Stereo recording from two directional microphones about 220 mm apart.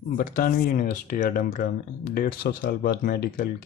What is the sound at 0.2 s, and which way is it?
Speech, 40° left (ahead or behind).